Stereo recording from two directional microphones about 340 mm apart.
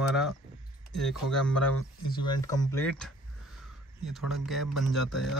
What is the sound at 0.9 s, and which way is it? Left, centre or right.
Speech, centre.